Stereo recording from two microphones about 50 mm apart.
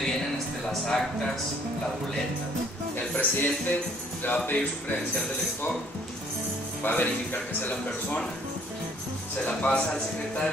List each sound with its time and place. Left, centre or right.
0.7 s a sound: centre
3.2 s speech: left
6.8 s speech: left
9.5 s a man's voice: left